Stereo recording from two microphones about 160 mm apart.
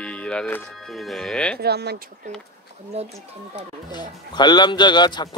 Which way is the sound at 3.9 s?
25° left (ahead or behind).